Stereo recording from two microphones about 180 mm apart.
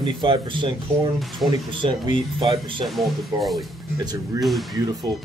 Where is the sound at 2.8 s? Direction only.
Centre (ahead or behind).